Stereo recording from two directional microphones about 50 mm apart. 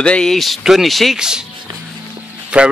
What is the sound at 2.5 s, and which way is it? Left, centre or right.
Speech, right.